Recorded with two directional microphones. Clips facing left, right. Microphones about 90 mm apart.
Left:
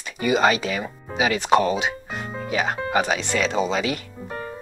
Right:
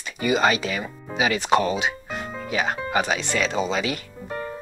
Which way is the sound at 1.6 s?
35° left (ahead or behind).